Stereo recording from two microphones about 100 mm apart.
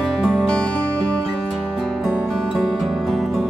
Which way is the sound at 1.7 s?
Centre (ahead or behind).